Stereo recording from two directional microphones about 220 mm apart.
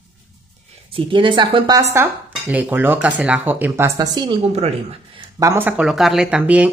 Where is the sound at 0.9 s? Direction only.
25° right (ahead or behind).